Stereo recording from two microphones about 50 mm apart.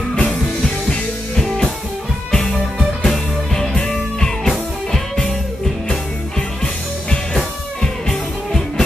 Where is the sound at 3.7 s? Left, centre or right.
Centre.